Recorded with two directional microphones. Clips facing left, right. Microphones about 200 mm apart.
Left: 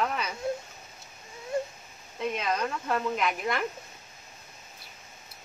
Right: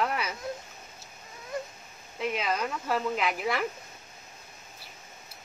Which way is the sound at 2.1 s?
5° right (ahead or behind).